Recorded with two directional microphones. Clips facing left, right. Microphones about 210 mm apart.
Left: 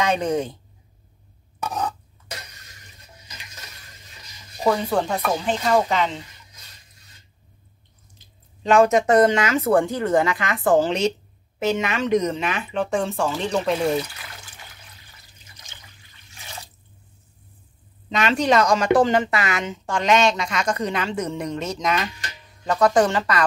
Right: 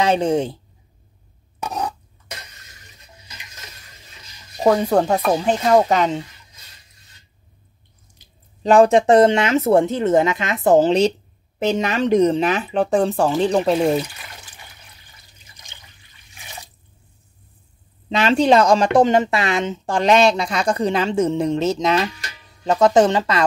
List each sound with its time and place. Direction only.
0.0 s speech: 30° right (ahead or behind)
1.6 s a sound: 15° right (ahead or behind)
4.6 s speech: 45° right (ahead or behind)
8.6 s speech: 35° right (ahead or behind)
11.6 s speech: 35° right (ahead or behind)
18.1 s speech: 30° right (ahead or behind)